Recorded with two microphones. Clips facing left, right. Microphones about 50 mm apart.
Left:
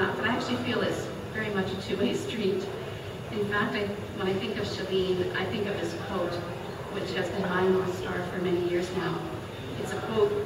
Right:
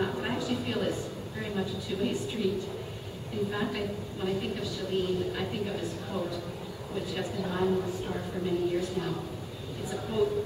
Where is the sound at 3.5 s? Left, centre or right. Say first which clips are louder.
Left 4 dB; left.